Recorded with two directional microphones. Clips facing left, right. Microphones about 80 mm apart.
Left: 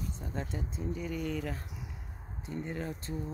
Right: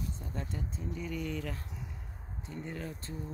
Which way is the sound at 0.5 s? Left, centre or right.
Centre.